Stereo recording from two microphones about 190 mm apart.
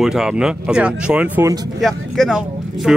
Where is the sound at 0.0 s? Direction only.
5° right (ahead or behind).